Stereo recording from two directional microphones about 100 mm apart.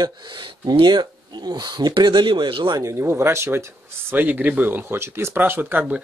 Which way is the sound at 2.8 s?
25° right (ahead or behind).